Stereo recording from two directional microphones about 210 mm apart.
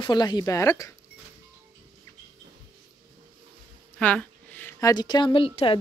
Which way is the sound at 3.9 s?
5° left (ahead or behind).